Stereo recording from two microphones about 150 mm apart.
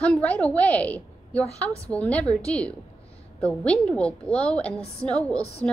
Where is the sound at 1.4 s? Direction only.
45° left (ahead or behind).